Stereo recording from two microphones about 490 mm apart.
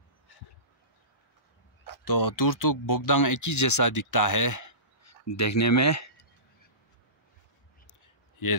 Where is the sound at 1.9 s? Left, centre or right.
Left.